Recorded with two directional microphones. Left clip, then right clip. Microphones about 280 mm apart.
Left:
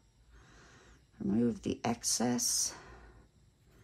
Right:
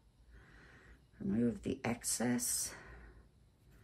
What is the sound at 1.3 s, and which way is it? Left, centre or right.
Speech, centre.